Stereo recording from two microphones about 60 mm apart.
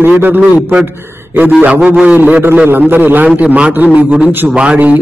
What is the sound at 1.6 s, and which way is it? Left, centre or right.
A man's voice, right.